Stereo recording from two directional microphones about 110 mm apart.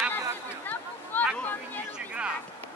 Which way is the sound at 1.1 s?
15° left (ahead or behind).